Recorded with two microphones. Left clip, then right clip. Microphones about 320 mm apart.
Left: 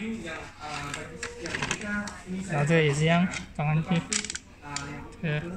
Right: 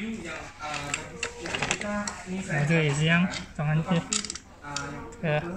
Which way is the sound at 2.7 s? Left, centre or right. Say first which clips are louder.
Left 2 dB; centre.